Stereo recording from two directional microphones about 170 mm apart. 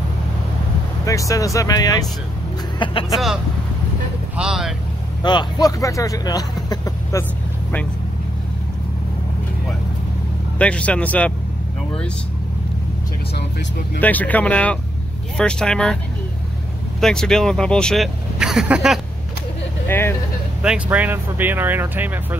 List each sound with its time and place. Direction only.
1.0 s speech: 20° left (ahead or behind)
4.4 s speech: 5° right (ahead or behind)
5.2 s speech: 25° left (ahead or behind)
10.6 s speech: 5° left (ahead or behind)
13.3 s speech: 75° left (ahead or behind)
14.0 s speech: 10° left (ahead or behind)
17.0 s speech: 5° left (ahead or behind)
19.9 s speech: 15° left (ahead or behind)
20.6 s speech: 5° right (ahead or behind)